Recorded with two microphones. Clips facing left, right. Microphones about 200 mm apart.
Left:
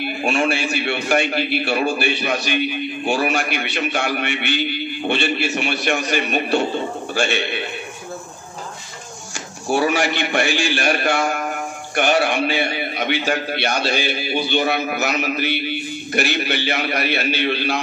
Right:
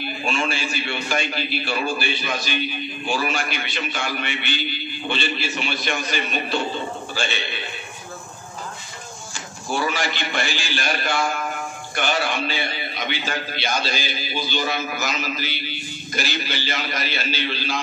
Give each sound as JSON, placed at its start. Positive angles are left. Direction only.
{"t": 0.0, "sound": "a man's voice", "side_deg": 65}
{"t": 9.3, "sound": "a man's voice", "side_deg": 70}